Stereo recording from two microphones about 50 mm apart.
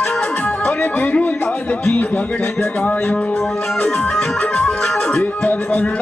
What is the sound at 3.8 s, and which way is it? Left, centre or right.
Music, centre.